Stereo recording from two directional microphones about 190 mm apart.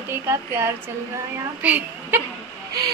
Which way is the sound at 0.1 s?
10° right (ahead or behind).